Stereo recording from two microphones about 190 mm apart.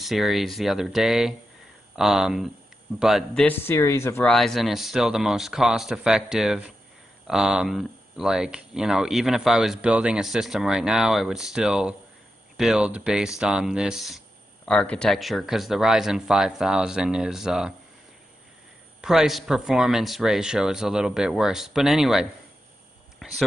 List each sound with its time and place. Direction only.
0.0 s speech: centre (ahead or behind)
3.4 s speech: 10° left (ahead or behind)
4.3 s speech: centre (ahead or behind)
18.9 s speech: centre (ahead or behind)
23.2 s a sound: centre (ahead or behind)